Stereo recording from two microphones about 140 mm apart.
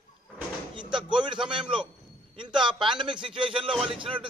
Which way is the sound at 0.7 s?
35° right (ahead or behind).